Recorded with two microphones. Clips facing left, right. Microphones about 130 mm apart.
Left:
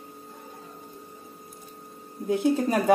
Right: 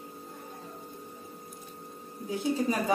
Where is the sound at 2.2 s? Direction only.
60° left (ahead or behind).